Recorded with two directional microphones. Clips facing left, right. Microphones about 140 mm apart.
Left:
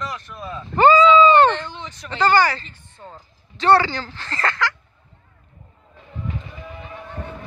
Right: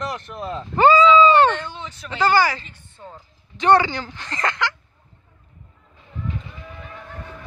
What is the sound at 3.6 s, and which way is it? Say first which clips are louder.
Speech: even; 15° right (ahead or behind).